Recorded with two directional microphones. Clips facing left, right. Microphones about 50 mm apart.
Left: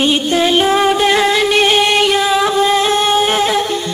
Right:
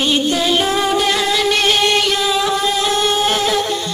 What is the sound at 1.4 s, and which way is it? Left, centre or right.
Music, left.